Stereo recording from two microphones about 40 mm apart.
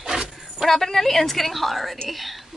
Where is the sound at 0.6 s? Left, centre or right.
Centre.